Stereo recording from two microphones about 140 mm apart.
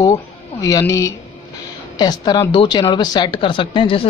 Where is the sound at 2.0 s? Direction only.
30° left (ahead or behind).